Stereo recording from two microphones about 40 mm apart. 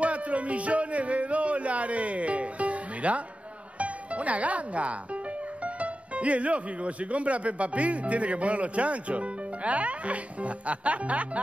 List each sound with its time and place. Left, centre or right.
0.0 s music: right
5.8 s speech: right